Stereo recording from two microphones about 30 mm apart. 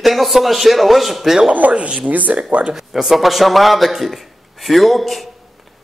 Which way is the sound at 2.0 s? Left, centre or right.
Right.